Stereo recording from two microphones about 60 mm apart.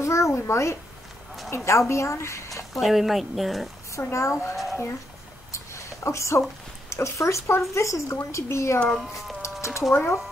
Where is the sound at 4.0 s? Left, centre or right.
Left.